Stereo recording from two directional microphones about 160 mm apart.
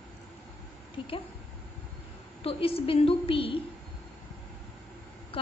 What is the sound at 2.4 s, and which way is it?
A woman's voice, 35° left (ahead or behind).